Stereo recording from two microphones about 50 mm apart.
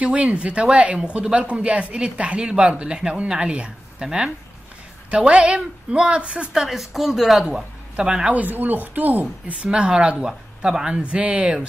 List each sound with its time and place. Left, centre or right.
0.0 s speech: right
6.6 s a woman's voice: centre
8.3 s speech: right